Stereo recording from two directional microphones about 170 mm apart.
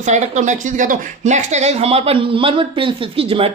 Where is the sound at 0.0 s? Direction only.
45° right (ahead or behind).